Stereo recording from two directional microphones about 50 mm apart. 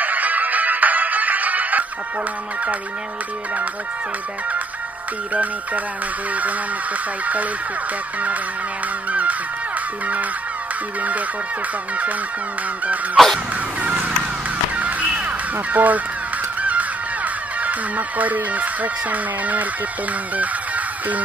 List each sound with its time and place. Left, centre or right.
0.0 s music: right
5.3 s speech: right
9.1 s music: right
11.0 s speech: right
13.2 s a sound: centre
13.7 s a sound: right
14.8 s music: right
15.5 s speech: right
20.3 s music: right